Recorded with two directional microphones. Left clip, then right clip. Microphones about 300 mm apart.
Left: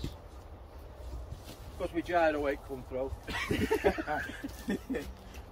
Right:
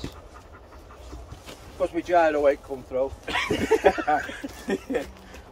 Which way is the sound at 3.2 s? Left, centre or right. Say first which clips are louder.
Right 7 dB; centre.